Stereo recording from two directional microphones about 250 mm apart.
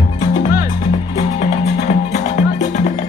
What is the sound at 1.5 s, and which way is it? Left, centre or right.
Music, left.